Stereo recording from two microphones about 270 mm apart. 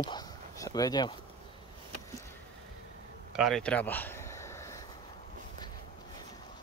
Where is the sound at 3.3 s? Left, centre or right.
Centre.